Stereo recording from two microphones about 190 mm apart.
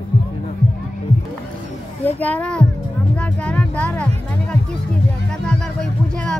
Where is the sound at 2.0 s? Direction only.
10° left (ahead or behind).